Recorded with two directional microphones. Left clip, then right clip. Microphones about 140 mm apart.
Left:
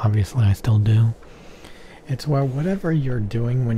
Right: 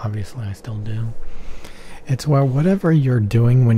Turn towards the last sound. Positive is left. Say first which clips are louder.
# right 6 dB
turn(degrees=-40)  # may be behind; listen again after turning